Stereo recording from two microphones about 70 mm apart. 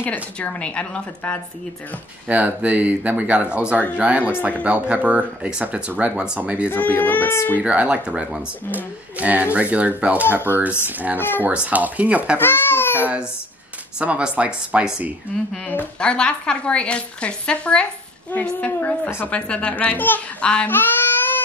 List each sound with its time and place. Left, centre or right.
0.0 s speech: left
2.2 s speech: right
6.7 s a woman's voice: left
7.6 s speech: centre
10.5 s a woman's voice: left
10.9 s speech: right
11.1 s a woman's voice: left
11.5 s speech: centre
12.4 s baby cry: left
13.9 s speech: centre
15.5 s a woman's voice: left
19.0 s a woman's voice: left
19.3 s a woman's voice: centre
20.6 s baby cry: left